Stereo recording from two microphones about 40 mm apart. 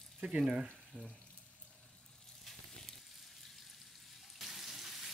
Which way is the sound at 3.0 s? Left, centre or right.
Centre.